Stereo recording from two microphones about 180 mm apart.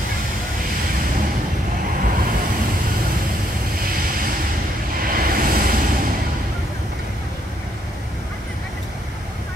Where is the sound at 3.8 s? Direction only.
55° right (ahead or behind).